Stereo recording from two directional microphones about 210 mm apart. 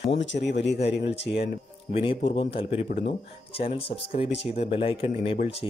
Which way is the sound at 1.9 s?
25° left (ahead or behind).